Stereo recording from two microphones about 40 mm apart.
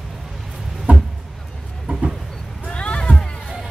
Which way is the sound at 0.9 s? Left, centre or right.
Right.